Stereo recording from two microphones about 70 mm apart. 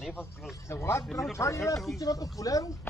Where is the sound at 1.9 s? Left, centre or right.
Left.